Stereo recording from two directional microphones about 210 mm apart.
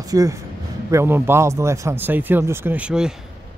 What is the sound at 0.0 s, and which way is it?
Speech, 15° right (ahead or behind).